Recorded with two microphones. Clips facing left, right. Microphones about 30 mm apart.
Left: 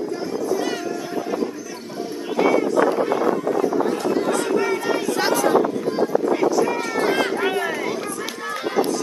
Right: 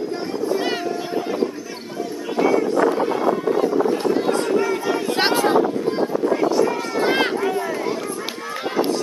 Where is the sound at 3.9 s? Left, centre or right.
Centre.